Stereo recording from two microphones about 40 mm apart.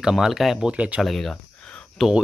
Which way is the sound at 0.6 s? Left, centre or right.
Right.